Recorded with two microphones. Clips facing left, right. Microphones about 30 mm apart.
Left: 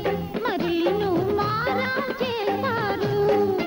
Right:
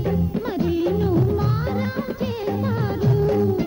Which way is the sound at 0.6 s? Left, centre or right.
Left.